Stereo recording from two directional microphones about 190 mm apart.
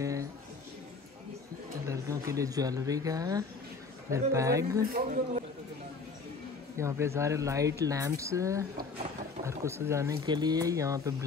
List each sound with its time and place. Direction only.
0.0 s a sound: 15° right (ahead or behind)
1.9 s speech: 15° right (ahead or behind)
4.9 s a man's voice: 45° right (ahead or behind)
6.8 s speech: 15° right (ahead or behind)